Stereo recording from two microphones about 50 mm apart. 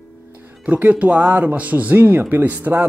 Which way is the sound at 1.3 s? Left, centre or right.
Right.